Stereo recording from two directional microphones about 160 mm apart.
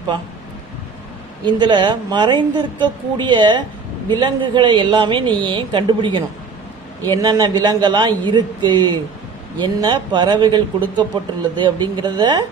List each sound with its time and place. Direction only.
1.4 s a woman's voice: 30° right (ahead or behind)